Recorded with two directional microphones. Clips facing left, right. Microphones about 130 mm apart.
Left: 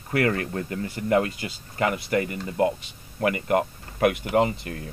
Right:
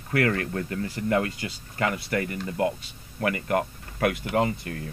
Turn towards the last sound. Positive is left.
turn(degrees=20)  # may be behind; listen again after turning